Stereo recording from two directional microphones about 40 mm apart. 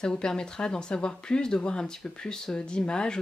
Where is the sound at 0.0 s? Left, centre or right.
Left.